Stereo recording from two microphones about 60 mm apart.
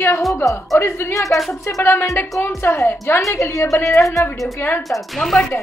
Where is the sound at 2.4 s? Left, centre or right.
Left.